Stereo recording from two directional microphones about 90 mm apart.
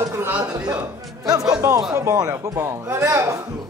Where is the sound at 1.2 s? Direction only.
45° right (ahead or behind).